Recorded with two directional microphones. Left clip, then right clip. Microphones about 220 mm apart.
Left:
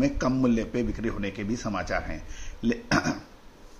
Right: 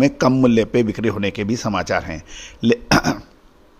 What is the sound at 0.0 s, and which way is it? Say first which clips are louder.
Speech: right 10 dB; 50° right (ahead or behind).